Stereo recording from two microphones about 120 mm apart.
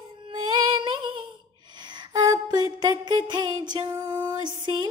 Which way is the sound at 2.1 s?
30° right (ahead or behind).